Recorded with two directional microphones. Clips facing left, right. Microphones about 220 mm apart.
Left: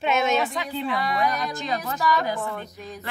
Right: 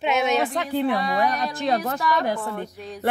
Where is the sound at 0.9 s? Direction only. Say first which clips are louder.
Right 2 dB; 30° right (ahead or behind).